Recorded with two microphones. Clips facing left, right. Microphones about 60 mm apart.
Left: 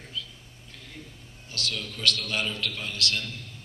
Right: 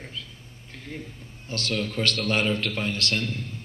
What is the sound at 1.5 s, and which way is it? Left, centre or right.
A man's voice, right.